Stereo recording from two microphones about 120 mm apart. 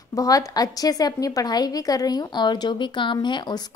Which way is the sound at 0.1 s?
30° left (ahead or behind).